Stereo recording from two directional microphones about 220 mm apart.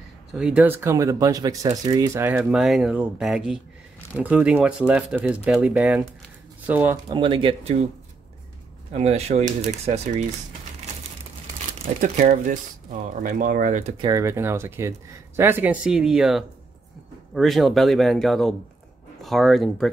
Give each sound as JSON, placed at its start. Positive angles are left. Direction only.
{"t": 0.3, "sound": "speech", "side_deg": -5}
{"t": 7.1, "sound": "speech", "side_deg": -20}
{"t": 8.9, "sound": "speech", "side_deg": -30}
{"t": 11.8, "sound": "speech", "side_deg": -35}
{"t": 14.0, "sound": "speech", "side_deg": -15}